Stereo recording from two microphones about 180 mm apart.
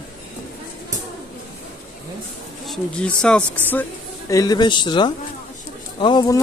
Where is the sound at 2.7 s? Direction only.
5° left (ahead or behind).